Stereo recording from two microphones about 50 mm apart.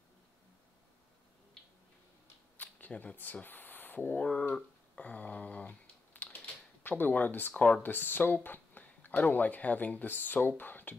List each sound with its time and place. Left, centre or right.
2.5 s camera: left
3.0 s speech: left
4.3 s speech: centre
5.0 s a sound: left
6.4 s typewriter: left
7.8 s speech: left